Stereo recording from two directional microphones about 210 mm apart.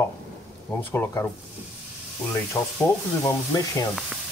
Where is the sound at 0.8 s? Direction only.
10° left (ahead or behind).